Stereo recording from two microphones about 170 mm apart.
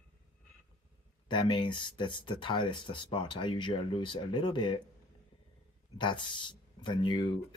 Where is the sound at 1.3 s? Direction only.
30° left (ahead or behind).